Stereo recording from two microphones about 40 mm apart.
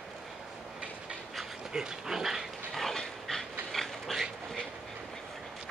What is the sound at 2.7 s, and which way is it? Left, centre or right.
Dog, centre.